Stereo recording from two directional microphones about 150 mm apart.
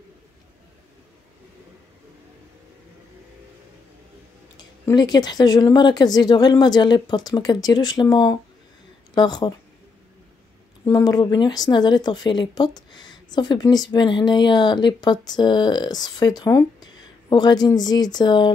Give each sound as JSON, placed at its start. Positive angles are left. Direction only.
{"t": 4.6, "sound": "speech", "side_deg": 25}
{"t": 10.9, "sound": "speech", "side_deg": 25}